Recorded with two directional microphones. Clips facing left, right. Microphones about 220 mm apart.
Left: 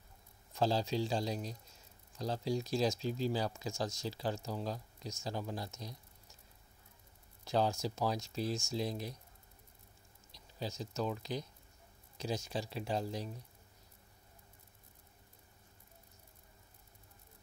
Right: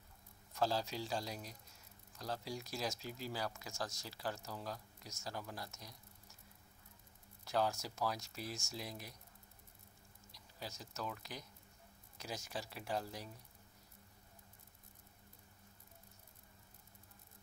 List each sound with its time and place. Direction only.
0.6 s speech: 25° left (ahead or behind)
7.4 s speech: 25° left (ahead or behind)
10.3 s speech: 25° left (ahead or behind)